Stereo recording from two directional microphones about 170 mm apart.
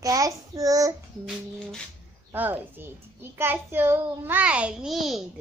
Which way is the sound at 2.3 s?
10° right (ahead or behind).